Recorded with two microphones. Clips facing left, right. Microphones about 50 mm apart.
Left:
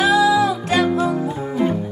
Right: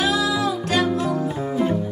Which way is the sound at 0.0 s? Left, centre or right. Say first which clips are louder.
Left 6 dB; left.